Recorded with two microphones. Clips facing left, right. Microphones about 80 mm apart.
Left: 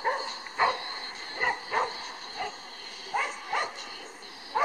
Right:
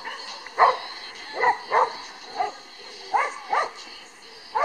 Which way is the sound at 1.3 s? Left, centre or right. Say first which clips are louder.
Right 8 dB; right.